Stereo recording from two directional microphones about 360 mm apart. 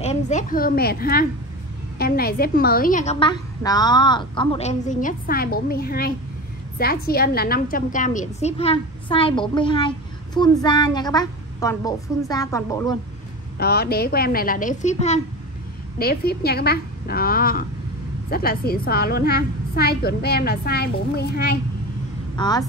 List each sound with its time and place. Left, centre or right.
0.0 s a woman's voice: centre
13.6 s a woman's voice: left
22.3 s a woman's voice: centre